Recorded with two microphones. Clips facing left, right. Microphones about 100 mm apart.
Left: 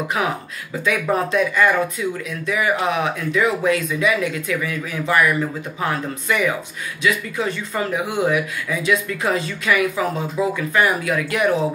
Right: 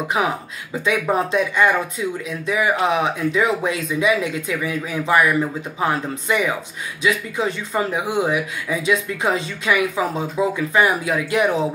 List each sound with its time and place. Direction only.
0.8 s speech: 20° right (ahead or behind)